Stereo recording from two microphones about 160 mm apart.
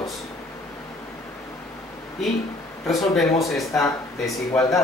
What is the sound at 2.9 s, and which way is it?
Speech, centre (ahead or behind).